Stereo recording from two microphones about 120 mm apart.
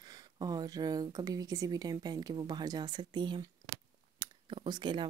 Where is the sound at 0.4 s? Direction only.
35° right (ahead or behind).